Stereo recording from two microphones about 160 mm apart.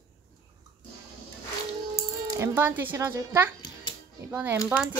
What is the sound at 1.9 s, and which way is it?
Speech, 15° right (ahead or behind).